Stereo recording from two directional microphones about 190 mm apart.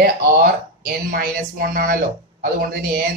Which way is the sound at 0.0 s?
50° right (ahead or behind).